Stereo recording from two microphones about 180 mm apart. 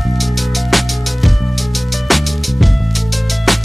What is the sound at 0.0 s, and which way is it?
Music, centre (ahead or behind).